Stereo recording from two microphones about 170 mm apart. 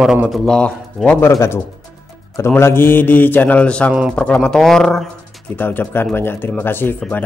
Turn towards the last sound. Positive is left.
turn(degrees=10)  # may be behind; listen again after turning